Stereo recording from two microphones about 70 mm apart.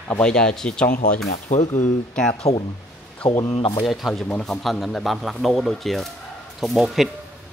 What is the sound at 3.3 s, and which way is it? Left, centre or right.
Speech, left.